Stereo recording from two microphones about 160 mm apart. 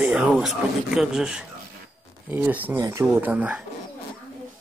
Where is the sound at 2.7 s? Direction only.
20° right (ahead or behind).